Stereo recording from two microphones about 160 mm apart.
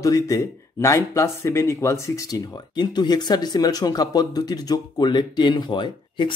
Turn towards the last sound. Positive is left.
turn(degrees=30)  # may be behind; listen again after turning